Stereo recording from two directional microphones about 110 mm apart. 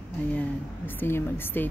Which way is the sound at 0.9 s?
20° left (ahead or behind).